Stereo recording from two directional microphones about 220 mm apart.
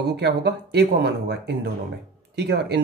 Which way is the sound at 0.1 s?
50° right (ahead or behind).